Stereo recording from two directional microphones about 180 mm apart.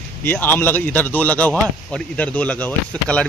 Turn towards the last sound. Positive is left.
turn(degrees=10)  # may be behind; listen again after turning